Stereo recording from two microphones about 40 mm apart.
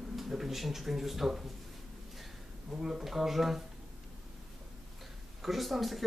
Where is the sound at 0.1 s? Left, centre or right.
Centre.